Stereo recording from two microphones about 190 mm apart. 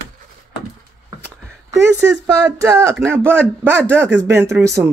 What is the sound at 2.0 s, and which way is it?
Speech, 15° right (ahead or behind).